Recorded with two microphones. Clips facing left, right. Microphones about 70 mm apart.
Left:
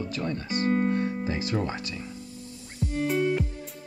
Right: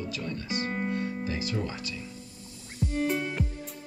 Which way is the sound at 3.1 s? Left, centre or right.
Centre.